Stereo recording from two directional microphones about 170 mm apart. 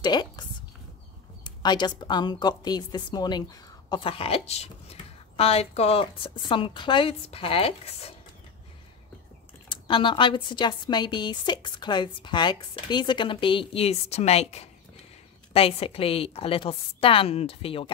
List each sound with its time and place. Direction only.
0.0 s a sound: 25° left (ahead or behind)
1.4 s a woman's voice: 25° left (ahead or behind)
9.7 s a woman's voice: 30° left (ahead or behind)